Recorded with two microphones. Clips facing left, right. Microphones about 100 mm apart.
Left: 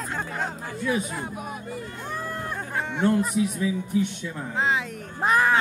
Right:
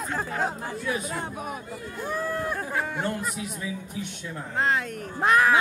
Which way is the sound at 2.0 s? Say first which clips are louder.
Right 6 dB; 5° right (ahead or behind).